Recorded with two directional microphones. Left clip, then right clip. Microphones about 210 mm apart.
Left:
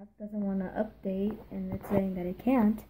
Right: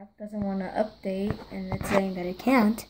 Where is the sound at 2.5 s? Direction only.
35° right (ahead or behind).